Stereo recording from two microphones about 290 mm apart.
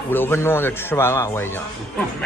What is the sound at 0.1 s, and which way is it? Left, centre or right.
A man's voice, centre.